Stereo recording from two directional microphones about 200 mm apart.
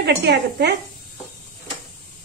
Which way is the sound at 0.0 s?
60° right (ahead or behind).